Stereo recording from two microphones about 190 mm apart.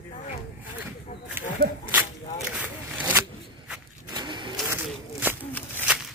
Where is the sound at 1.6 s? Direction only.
55° right (ahead or behind).